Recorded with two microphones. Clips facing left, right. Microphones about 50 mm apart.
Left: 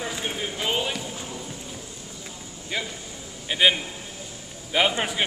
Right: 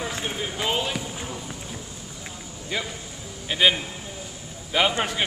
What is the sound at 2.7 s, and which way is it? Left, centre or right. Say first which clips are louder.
Music: right 1 dB; centre.